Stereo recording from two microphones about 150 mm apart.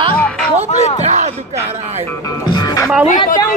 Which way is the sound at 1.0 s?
50° right (ahead or behind).